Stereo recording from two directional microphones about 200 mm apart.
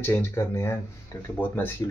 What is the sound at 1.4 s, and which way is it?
Speech, 5° left (ahead or behind).